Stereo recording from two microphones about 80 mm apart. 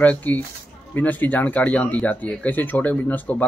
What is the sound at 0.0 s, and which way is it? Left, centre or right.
Speech, left.